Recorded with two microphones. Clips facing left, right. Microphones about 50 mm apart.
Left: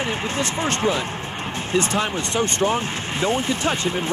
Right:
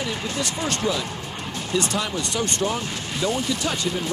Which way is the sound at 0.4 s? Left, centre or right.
Left.